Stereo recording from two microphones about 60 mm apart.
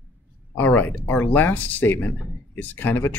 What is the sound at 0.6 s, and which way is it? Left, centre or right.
Speech, left.